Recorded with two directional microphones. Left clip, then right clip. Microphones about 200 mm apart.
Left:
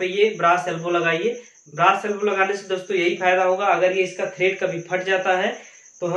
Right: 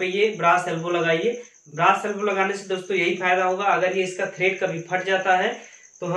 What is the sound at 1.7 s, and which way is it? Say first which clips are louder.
Speech: left 1 dB; 10° left (ahead or behind).